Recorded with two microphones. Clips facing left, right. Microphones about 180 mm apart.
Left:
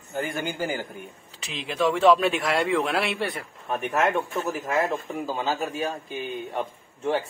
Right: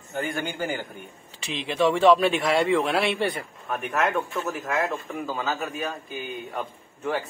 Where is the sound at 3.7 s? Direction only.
30° left (ahead or behind).